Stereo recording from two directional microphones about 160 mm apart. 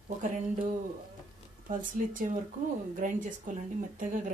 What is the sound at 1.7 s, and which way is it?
Speech, 55° right (ahead or behind).